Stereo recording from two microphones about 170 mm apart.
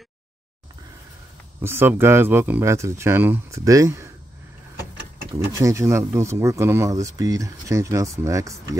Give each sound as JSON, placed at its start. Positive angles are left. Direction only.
{"t": 1.6, "sound": "speech", "side_deg": -15}
{"t": 5.3, "sound": "speech", "side_deg": -20}